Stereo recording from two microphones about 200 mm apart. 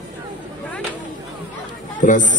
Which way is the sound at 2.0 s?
40° left (ahead or behind).